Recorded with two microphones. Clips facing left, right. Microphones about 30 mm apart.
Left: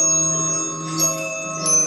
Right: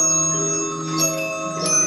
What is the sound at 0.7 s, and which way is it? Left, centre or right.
Music, right.